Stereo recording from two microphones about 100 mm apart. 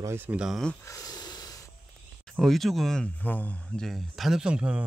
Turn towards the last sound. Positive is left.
turn(degrees=-10)  # may be behind; listen again after turning